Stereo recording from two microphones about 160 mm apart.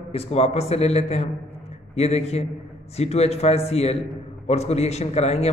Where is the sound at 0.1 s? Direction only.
40° left (ahead or behind).